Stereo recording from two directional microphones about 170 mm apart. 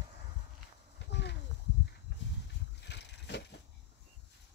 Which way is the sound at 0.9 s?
90° left.